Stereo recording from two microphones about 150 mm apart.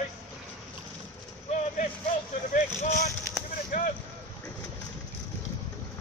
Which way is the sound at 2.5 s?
60° left (ahead or behind).